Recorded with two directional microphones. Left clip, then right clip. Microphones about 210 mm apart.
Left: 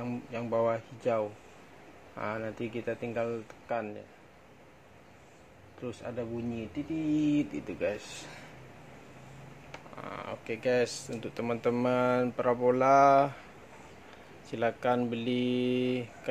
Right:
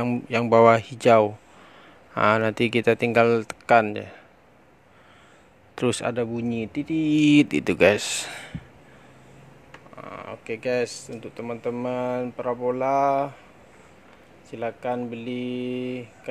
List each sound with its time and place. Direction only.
0.0 s speech: 45° right (ahead or behind)
5.8 s speech: 50° right (ahead or behind)
10.0 s speech: 15° right (ahead or behind)
11.1 s speech: centre (ahead or behind)
14.5 s speech: 5° left (ahead or behind)